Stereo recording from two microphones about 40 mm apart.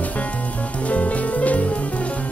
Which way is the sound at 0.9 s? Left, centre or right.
Left.